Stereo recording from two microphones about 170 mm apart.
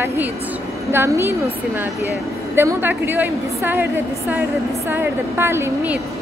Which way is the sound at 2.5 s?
15° right (ahead or behind).